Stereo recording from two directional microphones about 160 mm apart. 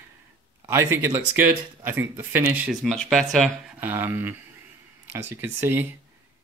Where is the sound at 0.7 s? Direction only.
15° right (ahead or behind); by 3.7 s centre (ahead or behind).